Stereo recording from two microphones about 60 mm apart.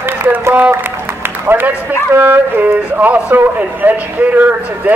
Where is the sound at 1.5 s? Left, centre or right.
Right.